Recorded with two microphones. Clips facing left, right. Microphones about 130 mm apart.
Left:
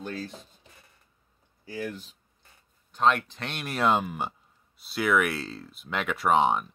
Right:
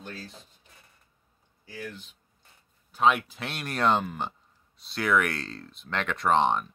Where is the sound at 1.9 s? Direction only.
35° left (ahead or behind).